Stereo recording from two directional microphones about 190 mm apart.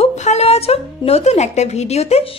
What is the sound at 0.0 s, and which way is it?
A woman's voice, 35° left (ahead or behind).